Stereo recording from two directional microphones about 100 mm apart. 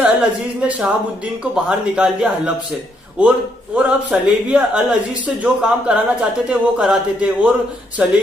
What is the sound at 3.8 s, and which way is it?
Speech, 5° right (ahead or behind).